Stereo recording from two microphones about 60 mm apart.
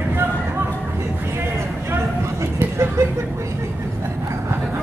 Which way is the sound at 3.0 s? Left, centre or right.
Right.